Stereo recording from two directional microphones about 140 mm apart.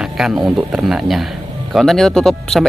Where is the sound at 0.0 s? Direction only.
5° right (ahead or behind).